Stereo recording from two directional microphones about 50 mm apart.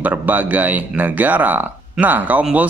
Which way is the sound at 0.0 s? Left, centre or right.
Right.